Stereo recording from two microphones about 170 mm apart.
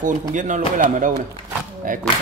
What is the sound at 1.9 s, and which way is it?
Speech, 55° right (ahead or behind).